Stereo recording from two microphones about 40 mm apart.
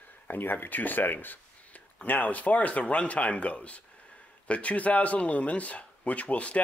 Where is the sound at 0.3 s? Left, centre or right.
Left.